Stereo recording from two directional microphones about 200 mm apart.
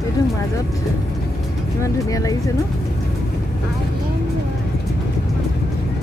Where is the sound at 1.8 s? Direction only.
15° left (ahead or behind).